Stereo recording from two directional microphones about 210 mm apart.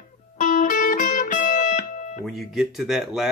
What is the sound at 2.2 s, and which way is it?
Speech, centre (ahead or behind).